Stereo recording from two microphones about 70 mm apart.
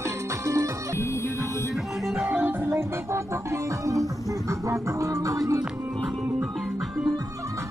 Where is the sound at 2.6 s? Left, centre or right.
Right.